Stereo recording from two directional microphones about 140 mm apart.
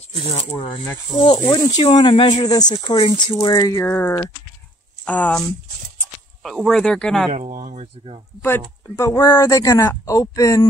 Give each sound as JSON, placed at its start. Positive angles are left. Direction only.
{"t": 1.5, "sound": "speech", "side_deg": 35}
{"t": 6.4, "sound": "speech", "side_deg": 0}
{"t": 7.3, "sound": "speech", "side_deg": -60}
{"t": 8.4, "sound": "speech", "side_deg": 15}